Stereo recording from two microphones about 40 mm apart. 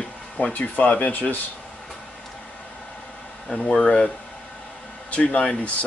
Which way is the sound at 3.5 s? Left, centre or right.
Centre.